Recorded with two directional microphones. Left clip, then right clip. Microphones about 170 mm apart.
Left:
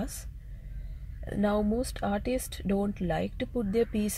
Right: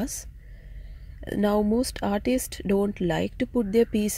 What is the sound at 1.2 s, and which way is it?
Speech, 20° right (ahead or behind).